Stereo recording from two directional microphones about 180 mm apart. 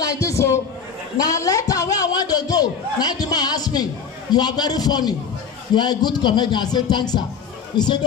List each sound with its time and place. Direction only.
0.0 s a man's voice: 20° left (ahead or behind)
1.1 s a sound: 20° left (ahead or behind)
5.8 s a man's voice: 25° left (ahead or behind)